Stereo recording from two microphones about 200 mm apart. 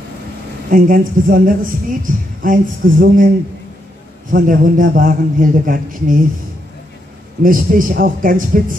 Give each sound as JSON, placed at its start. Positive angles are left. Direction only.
{"t": 0.7, "sound": "a man's voice", "side_deg": -45}
{"t": 4.3, "sound": "a man's voice", "side_deg": -45}
{"t": 7.4, "sound": "a man's voice", "side_deg": -45}